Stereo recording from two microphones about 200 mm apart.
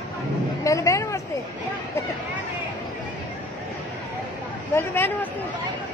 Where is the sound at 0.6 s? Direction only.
15° left (ahead or behind).